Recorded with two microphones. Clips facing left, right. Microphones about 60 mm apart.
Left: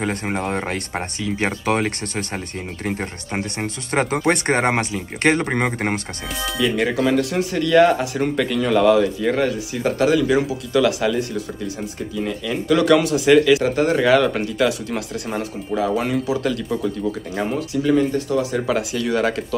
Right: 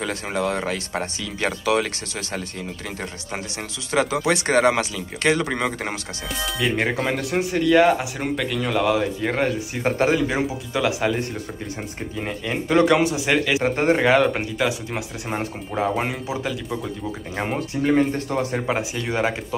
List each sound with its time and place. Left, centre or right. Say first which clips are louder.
0.0 s speech: left 1 dB; left
0.9 s speech: left 3 dB; left
1.7 s speech: right 1 dB; left
3.3 s speech: left 7 dB; left
6.7 s speech: left 5 dB; right
12.2 s speech: left 3 dB; right
13.5 s speech: left 3 dB; right
17.4 s speech: left 1 dB; right
18.7 s speech: left 4 dB; right